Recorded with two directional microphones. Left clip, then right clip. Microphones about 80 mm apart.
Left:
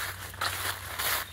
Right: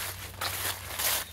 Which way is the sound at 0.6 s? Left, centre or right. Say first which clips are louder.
Left 1 dB; right.